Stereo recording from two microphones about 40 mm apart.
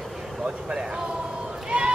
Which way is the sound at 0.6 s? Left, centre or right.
Right.